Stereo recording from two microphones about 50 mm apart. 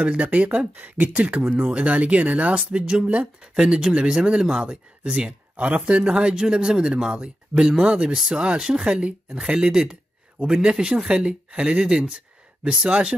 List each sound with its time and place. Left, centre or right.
0.0 s speech: right
2.5 s speech: right